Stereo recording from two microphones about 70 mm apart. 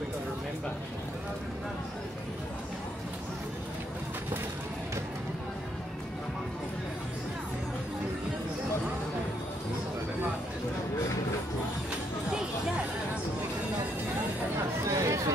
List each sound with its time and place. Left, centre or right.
12.3 s music: centre
14.9 s chatter: right